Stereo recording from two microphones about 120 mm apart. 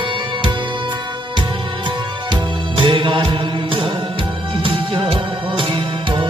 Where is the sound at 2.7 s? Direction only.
45° right (ahead or behind).